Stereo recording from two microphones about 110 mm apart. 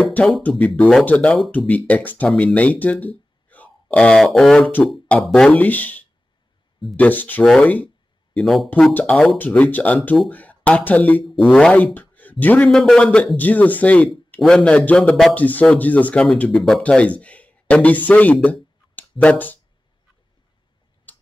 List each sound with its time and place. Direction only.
0.0 s a sound: 15° left (ahead or behind)
0.4 s speech: 15° left (ahead or behind)
8.4 s speech: centre (ahead or behind)
12.6 s speech: 5° left (ahead or behind)